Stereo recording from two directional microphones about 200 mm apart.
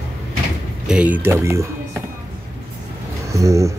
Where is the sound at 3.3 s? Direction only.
15° right (ahead or behind).